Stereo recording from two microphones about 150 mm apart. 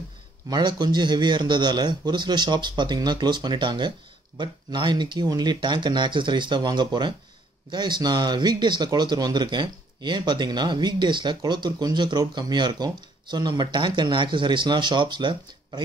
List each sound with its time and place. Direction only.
0.5 s speech: 30° right (ahead or behind)